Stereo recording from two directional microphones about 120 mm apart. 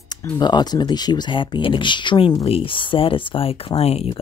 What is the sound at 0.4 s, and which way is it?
Speech, 35° left (ahead or behind).